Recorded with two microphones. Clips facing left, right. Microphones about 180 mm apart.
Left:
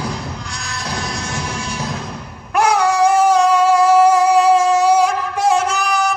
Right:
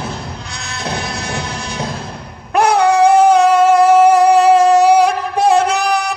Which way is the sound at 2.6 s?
60° right (ahead or behind).